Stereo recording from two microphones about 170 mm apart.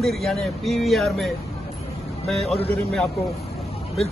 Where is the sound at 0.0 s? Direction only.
Centre (ahead or behind).